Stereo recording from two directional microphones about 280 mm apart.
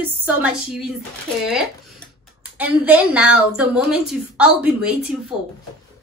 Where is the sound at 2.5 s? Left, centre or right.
Centre.